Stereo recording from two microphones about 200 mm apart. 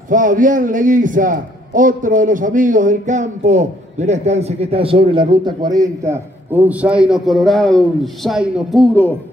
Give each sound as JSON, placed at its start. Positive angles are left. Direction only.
{"t": 0.1, "sound": "a man's voice", "side_deg": -40}